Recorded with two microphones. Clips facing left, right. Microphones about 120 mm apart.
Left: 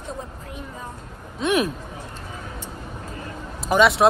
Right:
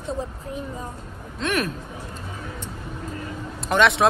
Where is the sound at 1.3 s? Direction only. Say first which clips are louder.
Left 4 dB; 15° left (ahead or behind).